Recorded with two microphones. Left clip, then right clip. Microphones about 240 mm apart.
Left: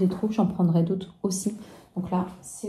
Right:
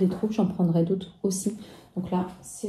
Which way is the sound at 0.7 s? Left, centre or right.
Centre.